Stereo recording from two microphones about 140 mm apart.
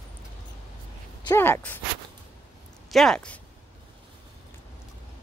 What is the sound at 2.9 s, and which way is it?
Speech, centre (ahead or behind).